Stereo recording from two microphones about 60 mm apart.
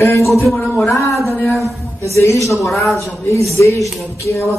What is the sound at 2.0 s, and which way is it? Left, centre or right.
Speech, left.